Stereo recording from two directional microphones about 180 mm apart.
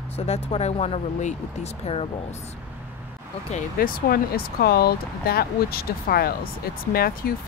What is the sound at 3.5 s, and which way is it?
Speech, 50° left (ahead or behind).